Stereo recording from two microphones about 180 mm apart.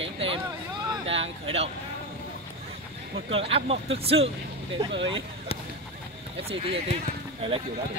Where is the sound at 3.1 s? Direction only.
30° right (ahead or behind).